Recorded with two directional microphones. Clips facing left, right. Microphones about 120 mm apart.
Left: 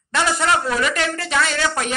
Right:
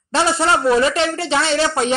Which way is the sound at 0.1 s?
30° right (ahead or behind).